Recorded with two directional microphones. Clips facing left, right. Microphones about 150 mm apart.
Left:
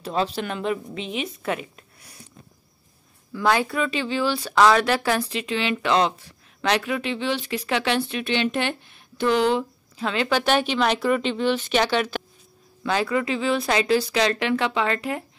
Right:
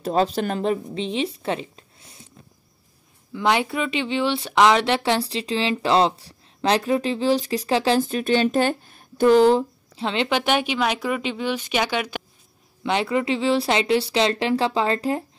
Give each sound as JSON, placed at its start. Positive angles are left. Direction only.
{"t": 0.0, "sound": "speech", "side_deg": -40}
{"t": 3.3, "sound": "speech", "side_deg": -20}
{"t": 12.8, "sound": "speech", "side_deg": -25}